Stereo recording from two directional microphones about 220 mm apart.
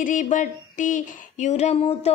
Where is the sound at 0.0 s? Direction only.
35° left (ahead or behind).